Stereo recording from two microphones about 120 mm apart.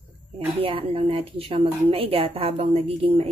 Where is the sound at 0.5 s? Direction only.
50° right (ahead or behind).